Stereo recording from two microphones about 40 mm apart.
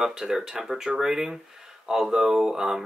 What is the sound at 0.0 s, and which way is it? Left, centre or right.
Speech, centre.